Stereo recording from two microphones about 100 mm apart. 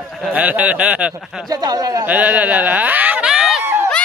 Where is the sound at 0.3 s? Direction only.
15° right (ahead or behind).